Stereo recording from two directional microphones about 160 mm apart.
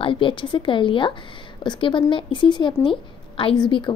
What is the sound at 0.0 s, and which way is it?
Speech, 30° left (ahead or behind).